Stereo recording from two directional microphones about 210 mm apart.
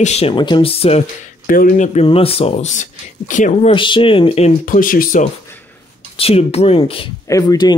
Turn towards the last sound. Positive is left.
turn(degrees=20)  # may be behind; listen again after turning